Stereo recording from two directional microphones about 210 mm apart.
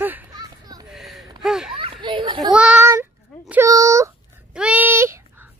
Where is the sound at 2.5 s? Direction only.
5° right (ahead or behind).